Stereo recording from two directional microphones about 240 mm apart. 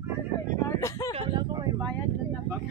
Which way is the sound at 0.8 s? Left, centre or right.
Centre.